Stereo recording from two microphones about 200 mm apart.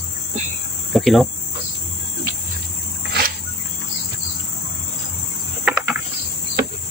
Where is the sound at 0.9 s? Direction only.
Centre (ahead or behind).